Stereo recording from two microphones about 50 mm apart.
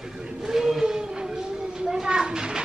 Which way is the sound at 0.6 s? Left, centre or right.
Centre.